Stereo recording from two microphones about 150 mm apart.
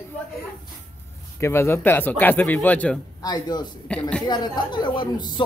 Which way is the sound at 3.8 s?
10° left (ahead or behind).